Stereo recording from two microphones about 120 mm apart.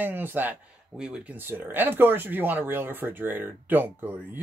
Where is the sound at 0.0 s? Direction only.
15° right (ahead or behind).